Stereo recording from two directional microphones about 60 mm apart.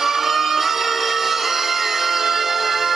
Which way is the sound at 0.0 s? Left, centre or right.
Centre.